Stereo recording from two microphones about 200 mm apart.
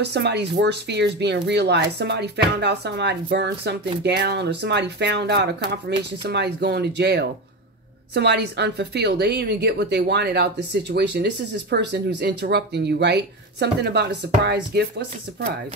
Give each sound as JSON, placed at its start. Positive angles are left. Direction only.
{"t": 0.0, "sound": "speech", "side_deg": -55}